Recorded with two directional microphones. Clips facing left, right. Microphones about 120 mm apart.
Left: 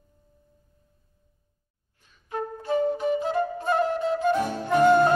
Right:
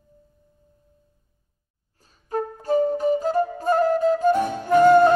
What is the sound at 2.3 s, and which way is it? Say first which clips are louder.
Flute: right 4 dB; 40° right (ahead or behind).